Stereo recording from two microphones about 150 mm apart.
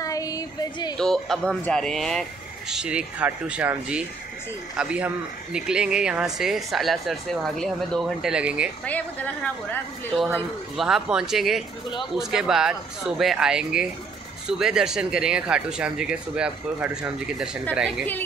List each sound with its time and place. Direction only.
0.0 s a sound: 25° left (ahead or behind)
0.9 s speech: 5° left (ahead or behind)
8.8 s a woman's voice: 10° left (ahead or behind)
10.8 s speech: 5° right (ahead or behind)